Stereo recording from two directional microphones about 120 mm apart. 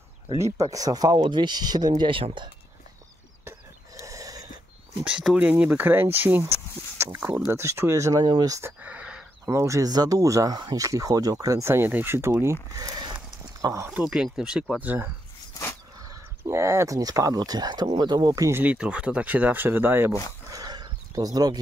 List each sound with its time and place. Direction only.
0.6 s speech: 30° right (ahead or behind); by 2.5 s 45° right (ahead or behind)
3.4 s a sound: 25° right (ahead or behind)
5.0 s speech: 5° right (ahead or behind); by 8.7 s 25° right (ahead or behind)
8.8 s a sound: 10° right (ahead or behind)
9.5 s speech: 25° right (ahead or behind)
12.7 s speech: 30° right (ahead or behind)
13.8 s speech: 10° right (ahead or behind)
16.1 s speech: 25° right (ahead or behind)
18.6 s speech: 10° right (ahead or behind)
20.4 s a sound: 30° right (ahead or behind)